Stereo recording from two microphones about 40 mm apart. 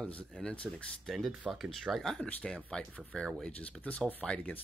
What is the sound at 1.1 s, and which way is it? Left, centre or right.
Speech, centre.